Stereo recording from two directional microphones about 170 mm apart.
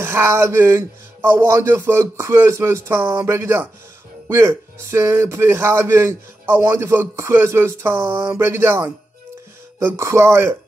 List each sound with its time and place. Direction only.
0.0 s a man's voice: 15° right (ahead or behind)